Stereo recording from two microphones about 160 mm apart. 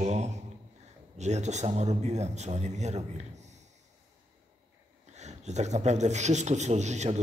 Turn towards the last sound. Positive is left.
turn(degrees=-45)  # may be behind; listen again after turning